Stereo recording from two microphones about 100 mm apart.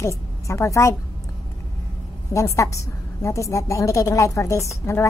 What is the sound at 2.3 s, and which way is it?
A woman's voice, 30° left (ahead or behind).